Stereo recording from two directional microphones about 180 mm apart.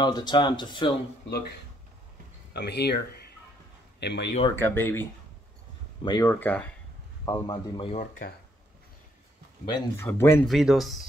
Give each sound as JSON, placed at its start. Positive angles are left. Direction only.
{"t": 0.0, "sound": "speech", "side_deg": 25}
{"t": 2.5, "sound": "speech", "side_deg": 65}
{"t": 4.6, "sound": "speech", "side_deg": 10}
{"t": 6.0, "sound": "speech", "side_deg": 20}
{"t": 7.9, "sound": "speech", "side_deg": 45}
{"t": 9.7, "sound": "speech", "side_deg": 25}
{"t": 10.4, "sound": "speech", "side_deg": 0}